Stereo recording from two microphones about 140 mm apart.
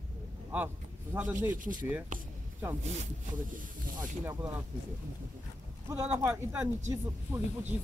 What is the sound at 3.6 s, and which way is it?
Speech, 70° right (ahead or behind).